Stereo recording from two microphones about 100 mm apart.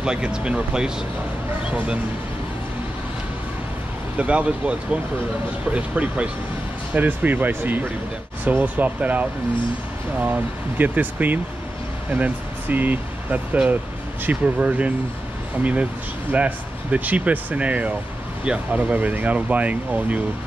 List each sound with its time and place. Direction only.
0.0 s speech: 10° right (ahead or behind)
4.2 s speech: 15° right (ahead or behind)